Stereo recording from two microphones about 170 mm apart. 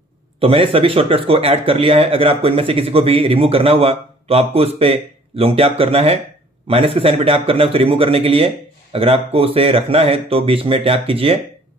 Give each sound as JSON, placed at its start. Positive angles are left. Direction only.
{"t": 0.4, "sound": "speech", "side_deg": -35}